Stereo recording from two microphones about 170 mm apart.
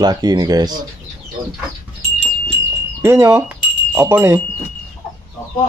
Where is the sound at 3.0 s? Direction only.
15° right (ahead or behind).